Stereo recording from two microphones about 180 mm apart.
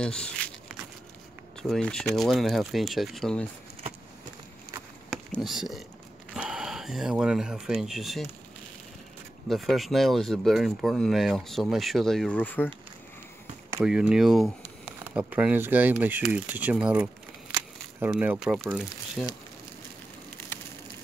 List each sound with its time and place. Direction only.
0.0 s speech: 5° left (ahead or behind)
1.6 s speech: 5° left (ahead or behind)
5.1 s speech: centre (ahead or behind)
9.5 s speech: centre (ahead or behind)
13.8 s speech: 5° right (ahead or behind)
17.5 s camera: 20° right (ahead or behind)
18.1 s speech: 5° right (ahead or behind)